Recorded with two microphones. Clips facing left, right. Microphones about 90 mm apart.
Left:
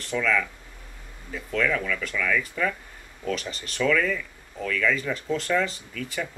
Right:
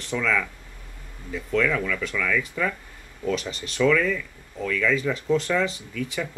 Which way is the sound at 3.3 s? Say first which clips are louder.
Right 3 dB; 25° right (ahead or behind).